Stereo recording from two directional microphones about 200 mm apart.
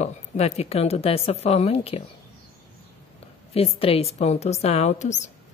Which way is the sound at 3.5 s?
30° left (ahead or behind).